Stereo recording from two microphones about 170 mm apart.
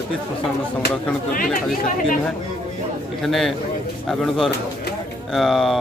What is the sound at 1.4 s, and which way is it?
Speech, 50° left (ahead or behind).